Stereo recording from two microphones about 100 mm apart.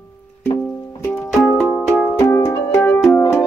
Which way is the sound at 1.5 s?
10° left (ahead or behind).